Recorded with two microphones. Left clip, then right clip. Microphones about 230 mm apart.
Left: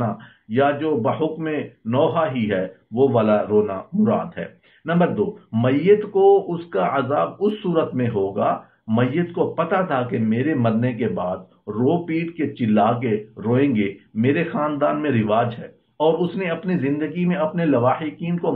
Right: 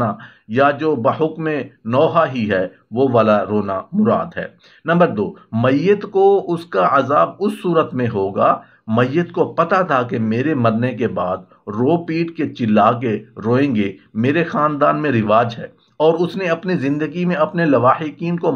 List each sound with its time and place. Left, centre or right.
0.6 s speech: right